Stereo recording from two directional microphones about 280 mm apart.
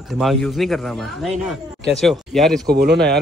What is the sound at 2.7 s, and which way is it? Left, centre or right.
Speech, right.